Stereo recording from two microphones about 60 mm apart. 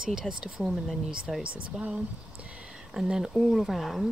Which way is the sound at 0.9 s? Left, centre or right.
Centre.